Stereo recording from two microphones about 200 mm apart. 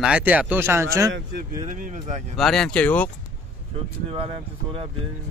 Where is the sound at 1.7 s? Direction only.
35° right (ahead or behind).